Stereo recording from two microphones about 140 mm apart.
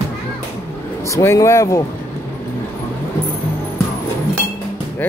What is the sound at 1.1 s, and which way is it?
Speech, 20° left (ahead or behind).